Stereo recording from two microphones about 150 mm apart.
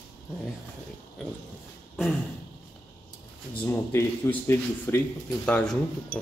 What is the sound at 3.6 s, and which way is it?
Speech, 15° left (ahead or behind).